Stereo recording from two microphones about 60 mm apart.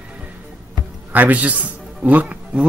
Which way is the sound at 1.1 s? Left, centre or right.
Right.